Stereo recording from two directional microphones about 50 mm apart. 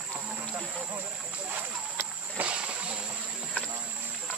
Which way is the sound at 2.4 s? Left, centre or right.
Right.